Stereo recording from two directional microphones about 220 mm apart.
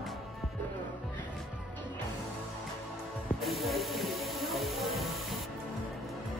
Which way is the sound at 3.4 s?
Centre (ahead or behind).